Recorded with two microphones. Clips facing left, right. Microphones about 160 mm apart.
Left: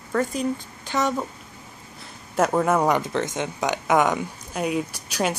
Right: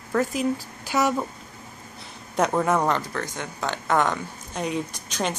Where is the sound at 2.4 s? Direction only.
5° left (ahead or behind).